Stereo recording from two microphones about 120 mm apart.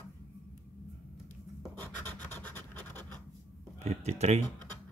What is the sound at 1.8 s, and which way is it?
Scratch, 15° left (ahead or behind).